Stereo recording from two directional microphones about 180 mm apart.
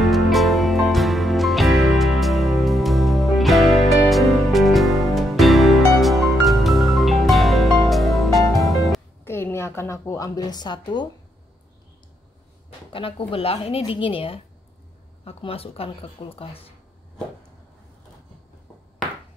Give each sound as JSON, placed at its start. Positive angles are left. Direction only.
{"t": 0.0, "sound": "music", "side_deg": 0}
{"t": 9.2, "sound": "a sound", "side_deg": 15}
{"t": 13.3, "sound": "speech", "side_deg": 35}